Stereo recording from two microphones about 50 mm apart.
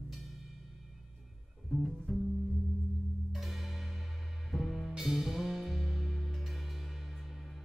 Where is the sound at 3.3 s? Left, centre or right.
Centre.